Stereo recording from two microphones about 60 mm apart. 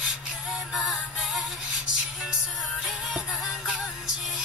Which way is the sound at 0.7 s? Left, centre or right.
Centre.